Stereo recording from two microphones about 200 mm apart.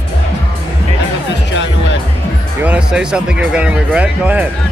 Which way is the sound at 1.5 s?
65° left (ahead or behind).